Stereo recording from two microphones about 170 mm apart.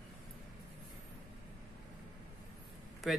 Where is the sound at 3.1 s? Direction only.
Centre (ahead or behind).